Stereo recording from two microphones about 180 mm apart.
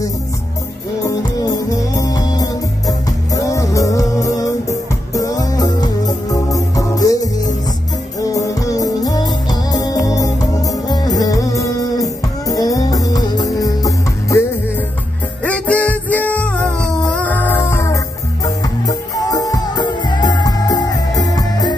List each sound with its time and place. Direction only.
1.0 s music: 20° left (ahead or behind)
15.4 s music: 10° left (ahead or behind)